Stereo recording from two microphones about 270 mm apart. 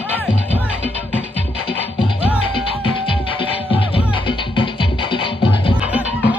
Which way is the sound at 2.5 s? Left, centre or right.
Centre.